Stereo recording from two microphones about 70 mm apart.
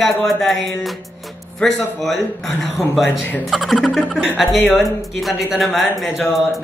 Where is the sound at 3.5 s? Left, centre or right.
Centre.